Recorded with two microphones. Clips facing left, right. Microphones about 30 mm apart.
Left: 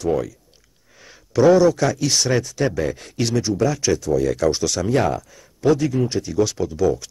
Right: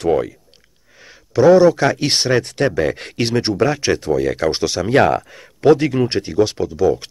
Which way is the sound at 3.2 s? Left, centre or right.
Right.